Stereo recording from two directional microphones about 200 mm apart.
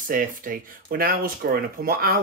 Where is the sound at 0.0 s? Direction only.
45° right (ahead or behind).